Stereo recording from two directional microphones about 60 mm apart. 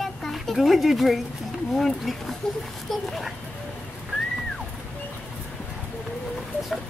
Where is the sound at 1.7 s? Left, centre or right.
Centre.